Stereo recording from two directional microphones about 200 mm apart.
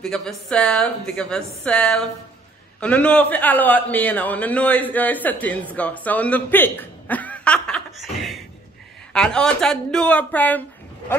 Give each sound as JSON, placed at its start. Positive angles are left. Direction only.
{"t": 0.0, "sound": "a woman's voice", "side_deg": 5}